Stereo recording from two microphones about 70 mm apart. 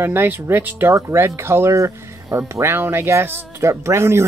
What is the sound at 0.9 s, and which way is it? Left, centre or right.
Speech, right.